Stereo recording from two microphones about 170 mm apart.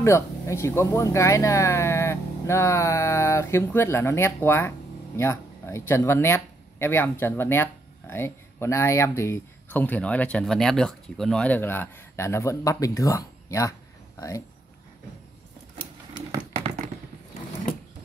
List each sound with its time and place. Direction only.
0.0 s speech: 15° left (ahead or behind)